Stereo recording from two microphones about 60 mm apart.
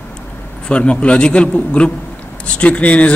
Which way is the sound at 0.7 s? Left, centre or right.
Centre.